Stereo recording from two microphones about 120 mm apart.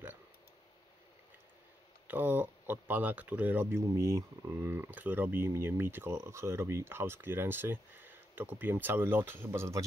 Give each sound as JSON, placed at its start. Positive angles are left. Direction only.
{"t": 2.0, "sound": "speech", "side_deg": -15}
{"t": 3.9, "sound": "speech", "side_deg": -25}